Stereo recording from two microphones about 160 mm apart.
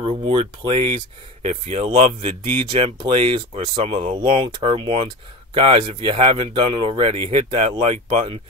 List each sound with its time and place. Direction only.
0.0 s speech: 35° right (ahead or behind)
1.4 s speech: 45° right (ahead or behind)
2.4 s speech: 30° right (ahead or behind)